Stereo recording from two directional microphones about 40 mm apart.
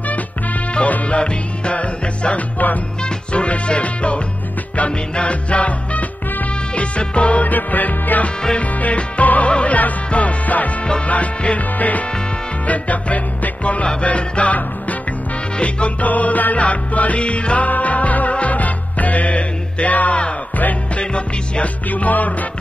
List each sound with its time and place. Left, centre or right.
1.0 s music: left
7.4 s music: left
16.1 s music: left
17.6 s music: left
21.8 s music: left